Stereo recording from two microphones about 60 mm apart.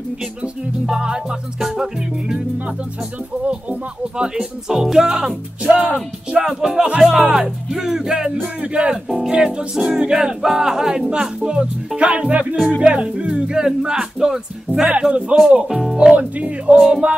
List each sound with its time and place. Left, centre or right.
0.2 s speech: centre
4.2 s speech: centre
6.4 s speech: centre
15.6 s speech: centre
16.2 s speech: right